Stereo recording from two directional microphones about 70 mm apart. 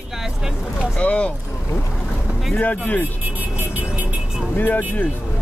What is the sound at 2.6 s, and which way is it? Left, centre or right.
Speech, left.